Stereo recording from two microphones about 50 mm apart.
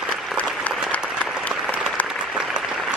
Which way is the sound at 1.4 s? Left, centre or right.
Left.